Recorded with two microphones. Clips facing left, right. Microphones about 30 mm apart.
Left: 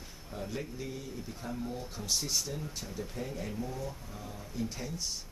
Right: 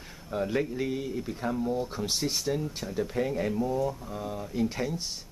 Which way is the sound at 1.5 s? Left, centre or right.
Centre.